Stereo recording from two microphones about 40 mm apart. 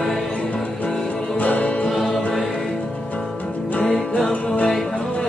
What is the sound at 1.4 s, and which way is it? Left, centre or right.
Music, left.